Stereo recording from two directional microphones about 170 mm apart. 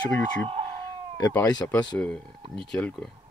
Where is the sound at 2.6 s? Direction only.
5° left (ahead or behind).